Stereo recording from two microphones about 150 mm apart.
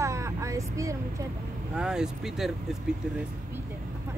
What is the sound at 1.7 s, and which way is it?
Speech, 5° right (ahead or behind).